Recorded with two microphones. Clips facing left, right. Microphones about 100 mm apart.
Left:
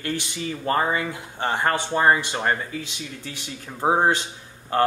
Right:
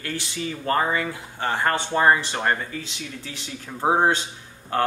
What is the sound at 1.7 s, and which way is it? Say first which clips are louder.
Speech: right 1 dB; 10° left (ahead or behind).